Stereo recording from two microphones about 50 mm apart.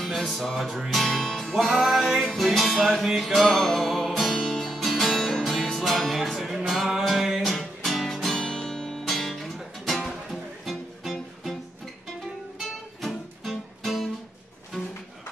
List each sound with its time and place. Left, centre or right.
0.0 s music: centre
1.0 s music: centre
1.5 s music: centre
3.4 s music: centre
12.5 s music: centre